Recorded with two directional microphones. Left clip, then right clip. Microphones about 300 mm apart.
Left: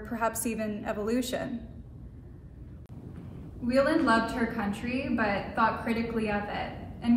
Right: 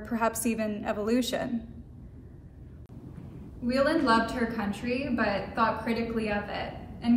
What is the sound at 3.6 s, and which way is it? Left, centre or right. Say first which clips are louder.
A woman's voice: even; centre.